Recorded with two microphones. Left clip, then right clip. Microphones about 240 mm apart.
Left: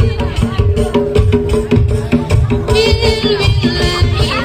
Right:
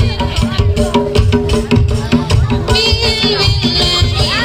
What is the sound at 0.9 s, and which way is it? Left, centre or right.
Music, right.